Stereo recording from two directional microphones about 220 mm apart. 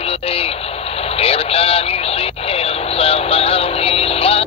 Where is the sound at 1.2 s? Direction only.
25° left (ahead or behind).